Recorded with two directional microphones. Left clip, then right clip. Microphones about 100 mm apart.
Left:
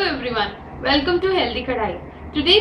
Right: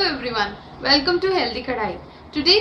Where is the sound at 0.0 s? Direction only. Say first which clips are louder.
Even; 20° right (ahead or behind).